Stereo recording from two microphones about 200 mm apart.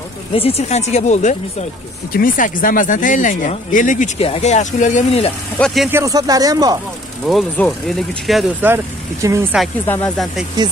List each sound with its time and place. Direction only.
0.3 s speech: 30° left (ahead or behind)
5.9 s speech: 15° right (ahead or behind)
7.2 s speech: centre (ahead or behind)
9.8 s speech: 10° left (ahead or behind)